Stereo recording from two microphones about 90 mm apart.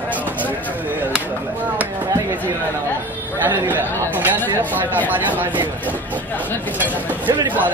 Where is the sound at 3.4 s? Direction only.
20° right (ahead or behind).